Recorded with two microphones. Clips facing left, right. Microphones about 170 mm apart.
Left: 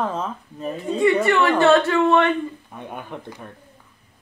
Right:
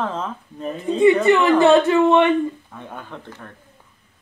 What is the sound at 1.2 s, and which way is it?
Speech, 20° right (ahead or behind).